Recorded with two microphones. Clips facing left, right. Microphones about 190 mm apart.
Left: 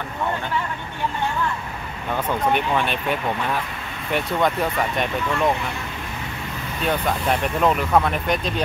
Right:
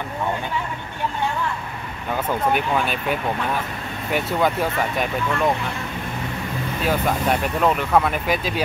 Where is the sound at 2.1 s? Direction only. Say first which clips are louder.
Even; 5° right (ahead or behind).